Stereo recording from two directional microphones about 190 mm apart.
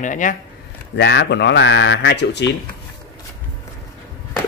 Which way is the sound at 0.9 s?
65° left (ahead or behind).